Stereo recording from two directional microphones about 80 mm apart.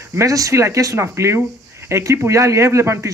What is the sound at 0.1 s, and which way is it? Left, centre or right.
Speech, right.